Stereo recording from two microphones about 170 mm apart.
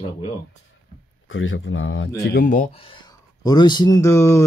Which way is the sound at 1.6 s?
90° left.